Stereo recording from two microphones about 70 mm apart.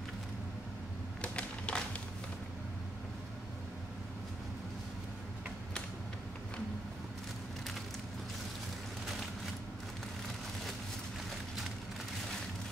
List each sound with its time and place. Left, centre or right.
1.2 s typewriter: centre